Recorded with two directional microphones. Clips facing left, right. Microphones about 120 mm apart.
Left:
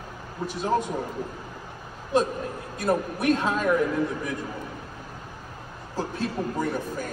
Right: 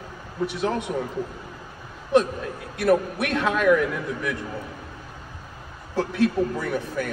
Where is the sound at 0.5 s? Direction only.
70° right (ahead or behind).